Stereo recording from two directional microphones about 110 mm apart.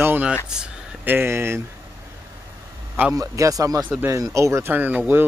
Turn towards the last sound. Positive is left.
turn(degrees=-15)  # may be behind; listen again after turning